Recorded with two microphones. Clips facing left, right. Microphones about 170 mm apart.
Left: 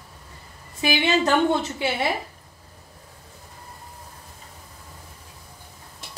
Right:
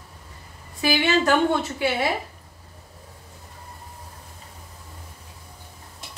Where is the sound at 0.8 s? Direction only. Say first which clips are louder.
Right 1 dB; 20° left (ahead or behind).